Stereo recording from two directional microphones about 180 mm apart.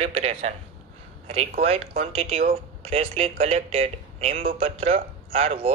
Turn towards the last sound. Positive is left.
turn(degrees=-35)  # may be behind; listen again after turning